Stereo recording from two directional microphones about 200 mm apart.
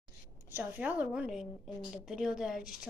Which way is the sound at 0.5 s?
10° right (ahead or behind).